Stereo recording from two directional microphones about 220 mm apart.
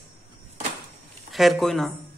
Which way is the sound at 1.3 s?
Centre (ahead or behind).